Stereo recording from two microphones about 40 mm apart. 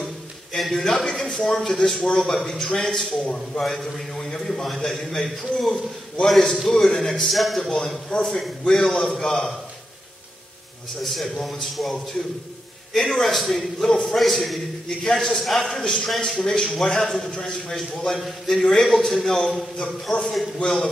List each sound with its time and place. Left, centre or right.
0.0 s a sound: centre
0.8 s a man's voice: centre
2.0 s a man's voice: centre
3.6 s a man's voice: centre
7.2 s a man's voice: centre
8.1 s a man's voice: centre
11.0 s a man's voice: centre
15.7 s a man's voice: centre
19.8 s a man's voice: left
20.6 s a man's voice: centre